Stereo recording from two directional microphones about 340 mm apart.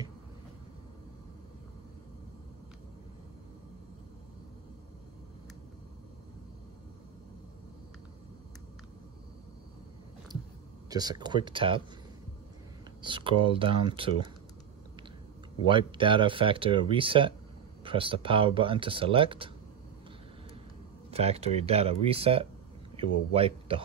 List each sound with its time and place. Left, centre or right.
10.9 s speech: centre
13.0 s speech: centre
15.6 s speech: centre
21.1 s speech: centre